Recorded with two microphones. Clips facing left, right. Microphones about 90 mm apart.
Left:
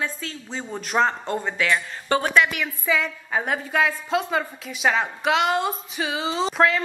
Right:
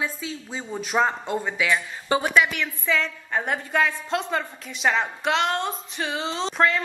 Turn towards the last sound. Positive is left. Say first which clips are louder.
# left 2 dB
turn(degrees=5)  # may be behind; listen again after turning